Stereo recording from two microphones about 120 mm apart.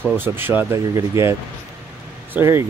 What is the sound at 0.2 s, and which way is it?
Speech, 15° right (ahead or behind).